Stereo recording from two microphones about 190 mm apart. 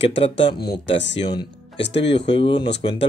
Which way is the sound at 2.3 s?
25° left (ahead or behind).